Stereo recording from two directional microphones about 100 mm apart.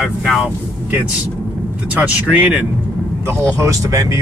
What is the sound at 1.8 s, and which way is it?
Speech, 15° right (ahead or behind).